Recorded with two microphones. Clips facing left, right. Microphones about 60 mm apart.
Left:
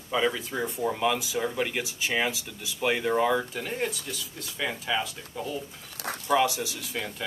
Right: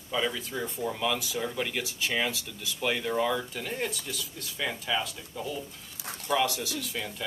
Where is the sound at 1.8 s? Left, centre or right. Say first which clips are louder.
Left 2 dB; centre.